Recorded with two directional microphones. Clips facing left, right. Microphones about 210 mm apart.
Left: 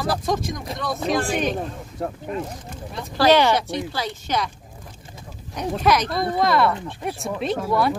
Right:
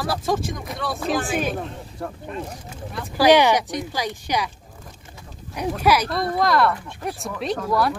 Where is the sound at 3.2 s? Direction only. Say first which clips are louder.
Right 1 dB; 15° right (ahead or behind).